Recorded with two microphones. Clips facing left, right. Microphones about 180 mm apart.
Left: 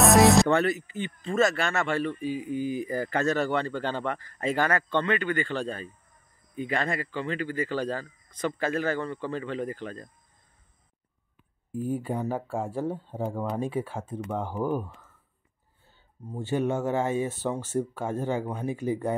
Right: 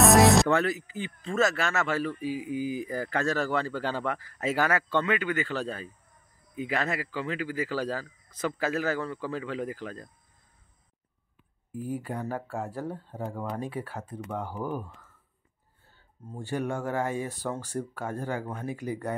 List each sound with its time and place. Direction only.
0.0 s speech: centre (ahead or behind)
11.8 s speech: 25° left (ahead or behind)
13.1 s speech: 15° left (ahead or behind)
13.7 s speech: 20° left (ahead or behind)
16.3 s speech: 20° left (ahead or behind)
18.4 s speech: 15° left (ahead or behind)
18.7 s speech: 25° left (ahead or behind)